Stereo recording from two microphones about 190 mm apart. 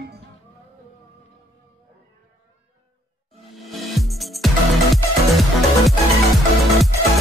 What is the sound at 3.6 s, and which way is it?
Music, centre (ahead or behind).